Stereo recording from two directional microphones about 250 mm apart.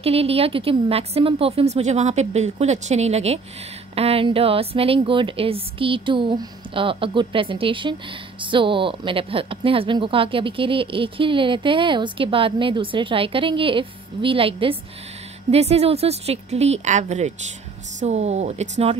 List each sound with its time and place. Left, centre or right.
0.0 s a woman's voice: right